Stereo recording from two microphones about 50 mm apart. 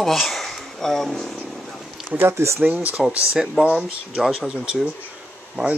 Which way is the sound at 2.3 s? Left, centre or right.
Right.